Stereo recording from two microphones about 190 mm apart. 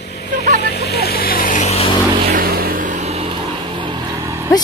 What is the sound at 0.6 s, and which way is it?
Vehicle, 60° left (ahead or behind).